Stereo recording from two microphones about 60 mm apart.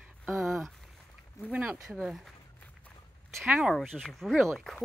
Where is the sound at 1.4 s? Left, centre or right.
Left.